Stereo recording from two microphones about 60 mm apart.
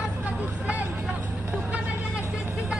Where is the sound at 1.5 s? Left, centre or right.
Centre.